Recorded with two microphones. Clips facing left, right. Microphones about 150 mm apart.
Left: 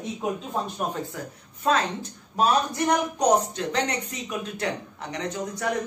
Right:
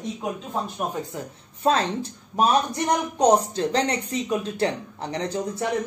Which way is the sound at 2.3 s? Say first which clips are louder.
Right 1 dB; 20° right (ahead or behind).